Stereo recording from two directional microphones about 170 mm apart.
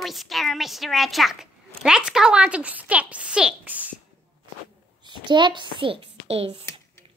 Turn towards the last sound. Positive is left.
turn(degrees=-35)  # may be behind; listen again after turning